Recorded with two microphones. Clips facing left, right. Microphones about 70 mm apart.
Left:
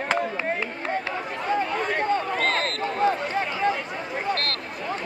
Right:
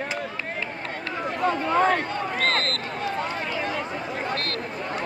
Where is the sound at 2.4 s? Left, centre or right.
Centre.